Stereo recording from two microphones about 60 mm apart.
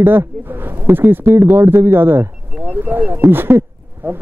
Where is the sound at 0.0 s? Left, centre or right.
Right.